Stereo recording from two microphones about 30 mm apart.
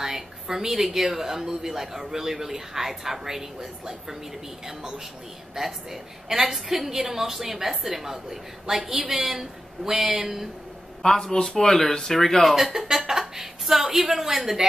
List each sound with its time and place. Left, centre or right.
0.0 s a woman's voice: centre
11.0 s speech: centre
12.5 s a woman's voice: centre